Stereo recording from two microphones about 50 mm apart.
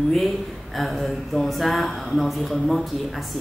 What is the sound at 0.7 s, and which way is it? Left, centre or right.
Speech, centre.